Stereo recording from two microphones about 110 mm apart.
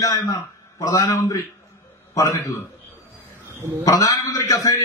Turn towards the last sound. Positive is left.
turn(degrees=30)  # may be behind; listen again after turning